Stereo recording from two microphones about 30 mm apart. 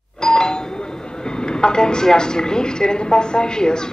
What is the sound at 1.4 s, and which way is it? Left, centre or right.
A woman's voice, left.